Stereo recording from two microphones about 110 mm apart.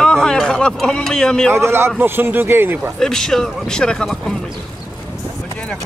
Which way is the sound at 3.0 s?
5° left (ahead or behind).